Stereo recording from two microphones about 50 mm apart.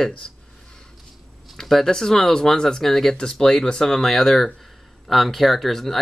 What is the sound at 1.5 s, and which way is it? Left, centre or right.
Speech, centre.